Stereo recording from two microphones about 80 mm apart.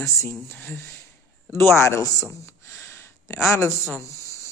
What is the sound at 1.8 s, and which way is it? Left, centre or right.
Speech, left.